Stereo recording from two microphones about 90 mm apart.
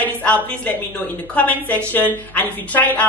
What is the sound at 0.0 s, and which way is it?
A woman's voice, 15° left (ahead or behind).